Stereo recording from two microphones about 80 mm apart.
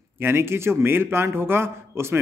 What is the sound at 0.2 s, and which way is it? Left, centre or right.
A man's voice, right.